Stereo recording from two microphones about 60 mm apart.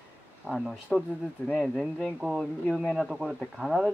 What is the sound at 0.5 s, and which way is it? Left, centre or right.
Speech, centre.